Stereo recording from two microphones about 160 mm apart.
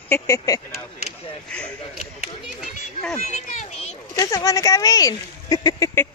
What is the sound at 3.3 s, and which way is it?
Speech, 45° left (ahead or behind).